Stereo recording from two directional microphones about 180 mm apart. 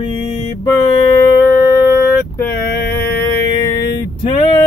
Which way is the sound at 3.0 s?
55° left (ahead or behind).